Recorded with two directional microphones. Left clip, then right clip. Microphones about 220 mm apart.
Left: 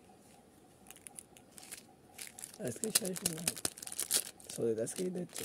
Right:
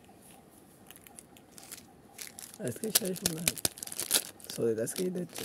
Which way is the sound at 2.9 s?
10° right (ahead or behind).